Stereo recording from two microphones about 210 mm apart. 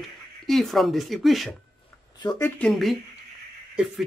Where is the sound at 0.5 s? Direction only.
Centre (ahead or behind).